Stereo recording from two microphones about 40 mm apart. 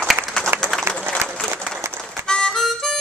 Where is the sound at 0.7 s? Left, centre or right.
Centre.